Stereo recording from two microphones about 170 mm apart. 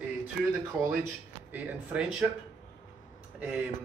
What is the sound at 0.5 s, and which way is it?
A man's voice, 15° right (ahead or behind).